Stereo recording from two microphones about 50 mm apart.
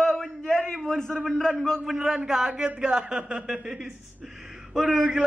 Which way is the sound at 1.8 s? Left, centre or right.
Centre.